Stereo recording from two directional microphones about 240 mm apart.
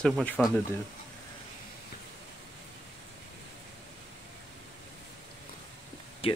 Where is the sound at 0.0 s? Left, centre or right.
Centre.